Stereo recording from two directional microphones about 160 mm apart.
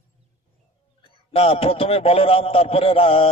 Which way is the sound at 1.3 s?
35° left (ahead or behind).